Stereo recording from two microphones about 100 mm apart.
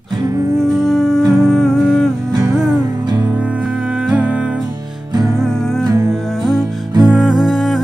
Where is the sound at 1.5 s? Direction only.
Centre (ahead or behind).